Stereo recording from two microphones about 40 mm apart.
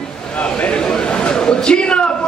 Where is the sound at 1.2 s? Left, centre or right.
Left.